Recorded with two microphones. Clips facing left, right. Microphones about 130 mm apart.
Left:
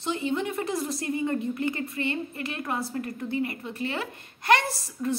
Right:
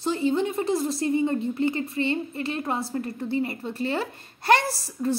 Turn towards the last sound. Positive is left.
turn(degrees=-35)  # may be behind; listen again after turning